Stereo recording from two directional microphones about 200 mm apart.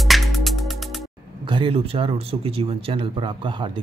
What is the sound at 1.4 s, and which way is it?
Speech, 25° right (ahead or behind).